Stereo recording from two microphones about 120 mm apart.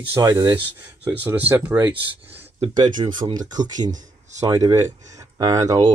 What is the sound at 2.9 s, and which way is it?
Speech, 40° right (ahead or behind).